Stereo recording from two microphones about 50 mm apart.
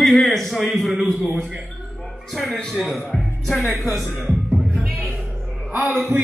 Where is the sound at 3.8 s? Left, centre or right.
Centre.